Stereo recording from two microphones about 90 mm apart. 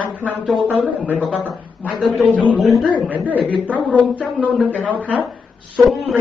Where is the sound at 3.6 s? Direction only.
15° left (ahead or behind).